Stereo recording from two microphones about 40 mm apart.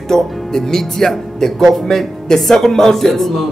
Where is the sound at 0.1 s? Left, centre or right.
Centre.